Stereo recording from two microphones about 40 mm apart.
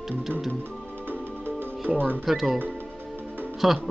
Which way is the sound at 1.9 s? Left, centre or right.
Right.